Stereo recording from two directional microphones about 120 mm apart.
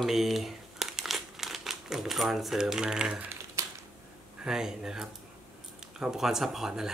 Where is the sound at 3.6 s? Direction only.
25° right (ahead or behind).